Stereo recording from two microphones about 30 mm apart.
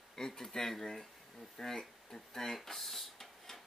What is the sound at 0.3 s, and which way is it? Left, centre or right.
Speech, centre.